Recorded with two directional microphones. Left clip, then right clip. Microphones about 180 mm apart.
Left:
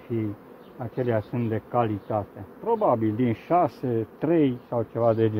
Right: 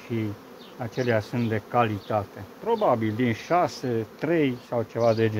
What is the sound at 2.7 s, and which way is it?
Speech, 20° left (ahead or behind).